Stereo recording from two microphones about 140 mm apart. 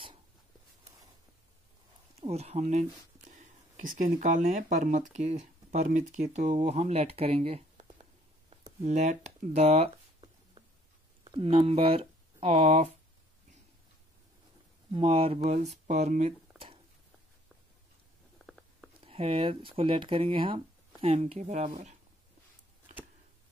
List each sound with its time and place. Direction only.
2.1 s speech: 50° right (ahead or behind)
14.9 s speech: 45° right (ahead or behind)
18.4 s stomach rumble: centre (ahead or behind)
19.0 s speech: 45° right (ahead or behind)